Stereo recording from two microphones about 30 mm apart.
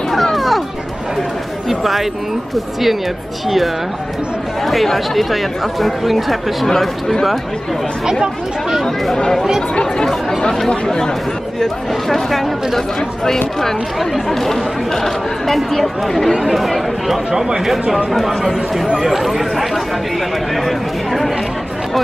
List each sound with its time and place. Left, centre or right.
0.1 s music: centre
1.7 s speech: centre
8.1 s speech: centre
11.6 s speech: centre
17.3 s speech: centre
17.9 s speech: centre
20.6 s speech: centre